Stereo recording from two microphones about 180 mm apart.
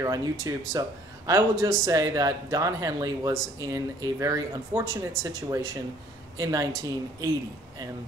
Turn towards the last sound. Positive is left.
turn(degrees=-20)  # may be behind; listen again after turning